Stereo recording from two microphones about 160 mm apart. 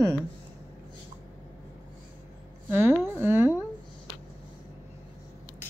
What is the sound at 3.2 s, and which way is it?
Speech, 15° right (ahead or behind).